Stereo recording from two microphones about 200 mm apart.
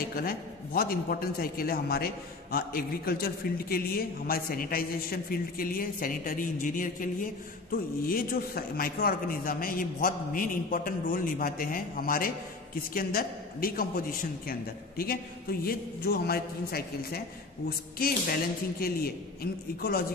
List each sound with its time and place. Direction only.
0.1 s a man's voice: 45° left (ahead or behind)